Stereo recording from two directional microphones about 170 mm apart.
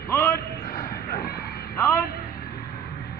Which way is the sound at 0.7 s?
60° left (ahead or behind).